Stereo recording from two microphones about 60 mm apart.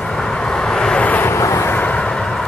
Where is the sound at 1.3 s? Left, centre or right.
Left.